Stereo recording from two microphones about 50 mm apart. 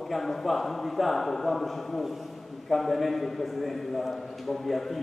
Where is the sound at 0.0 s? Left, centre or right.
Centre.